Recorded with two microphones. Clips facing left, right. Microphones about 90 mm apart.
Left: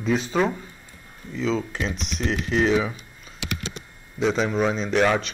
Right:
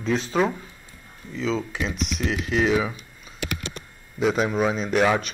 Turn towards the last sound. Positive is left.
turn(degrees=-5)  # may be behind; listen again after turning